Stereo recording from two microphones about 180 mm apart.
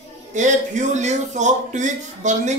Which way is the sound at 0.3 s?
40° right (ahead or behind).